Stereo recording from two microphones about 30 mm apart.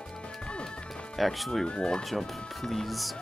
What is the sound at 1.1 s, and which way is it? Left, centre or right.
Speech, centre.